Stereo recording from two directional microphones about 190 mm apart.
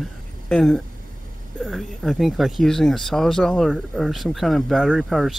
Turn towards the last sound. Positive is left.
turn(degrees=0)  # may be behind; listen again after turning